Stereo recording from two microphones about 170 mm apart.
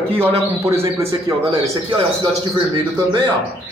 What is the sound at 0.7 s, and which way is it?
Speech, 15° right (ahead or behind).